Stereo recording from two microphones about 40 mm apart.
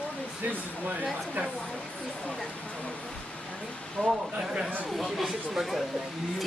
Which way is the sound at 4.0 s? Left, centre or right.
Left.